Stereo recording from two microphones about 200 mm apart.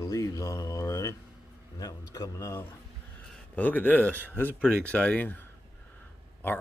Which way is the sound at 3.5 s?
10° left (ahead or behind).